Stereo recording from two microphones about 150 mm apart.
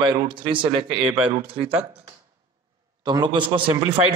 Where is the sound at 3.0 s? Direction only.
30° right (ahead or behind).